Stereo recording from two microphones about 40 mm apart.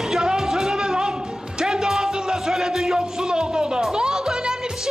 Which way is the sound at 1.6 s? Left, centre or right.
Centre.